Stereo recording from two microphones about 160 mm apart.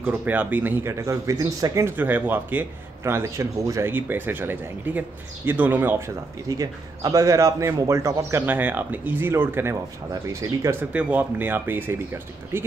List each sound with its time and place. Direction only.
0.0 s speech: 10° right (ahead or behind)